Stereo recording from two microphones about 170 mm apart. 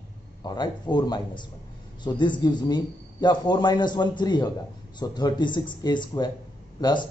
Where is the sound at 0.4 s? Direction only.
25° left (ahead or behind).